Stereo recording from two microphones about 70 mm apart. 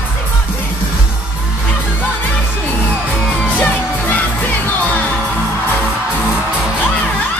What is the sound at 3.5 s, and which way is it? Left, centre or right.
Music, centre.